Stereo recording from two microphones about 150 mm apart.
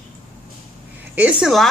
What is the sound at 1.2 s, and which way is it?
Speech, 5° right (ahead or behind).